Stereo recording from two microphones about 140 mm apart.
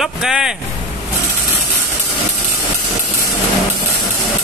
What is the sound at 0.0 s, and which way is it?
Speech, 5° right (ahead or behind).